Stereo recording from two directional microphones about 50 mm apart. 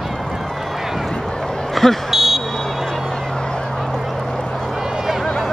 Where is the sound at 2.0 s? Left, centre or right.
Centre.